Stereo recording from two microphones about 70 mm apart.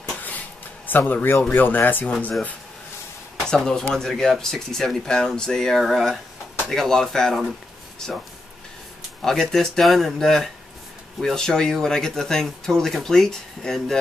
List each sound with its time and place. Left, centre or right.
0.8 s speech: left
3.4 s speech: centre
9.2 s speech: centre